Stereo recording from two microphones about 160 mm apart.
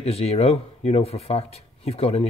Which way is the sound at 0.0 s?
40° left (ahead or behind).